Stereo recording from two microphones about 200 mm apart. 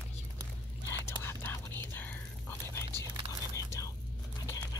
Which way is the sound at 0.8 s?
10° left (ahead or behind).